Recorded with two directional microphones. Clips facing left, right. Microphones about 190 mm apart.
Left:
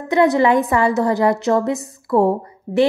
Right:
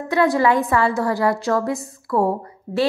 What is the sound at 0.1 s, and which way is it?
A woman's voice, 20° left (ahead or behind).